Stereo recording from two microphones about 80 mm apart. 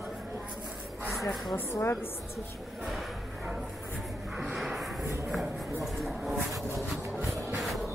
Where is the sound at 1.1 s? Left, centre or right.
Centre.